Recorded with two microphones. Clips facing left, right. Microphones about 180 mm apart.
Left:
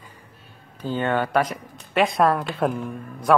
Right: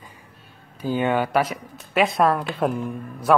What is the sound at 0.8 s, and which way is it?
Speech, 10° right (ahead or behind).